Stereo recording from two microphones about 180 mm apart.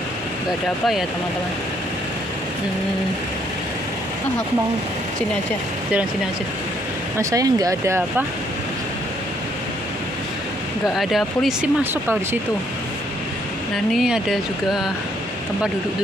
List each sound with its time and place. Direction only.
7.2 s speech: 20° right (ahead or behind)
11.0 s speech: centre (ahead or behind)
11.8 s speech: 10° right (ahead or behind)
13.9 s speech: centre (ahead or behind)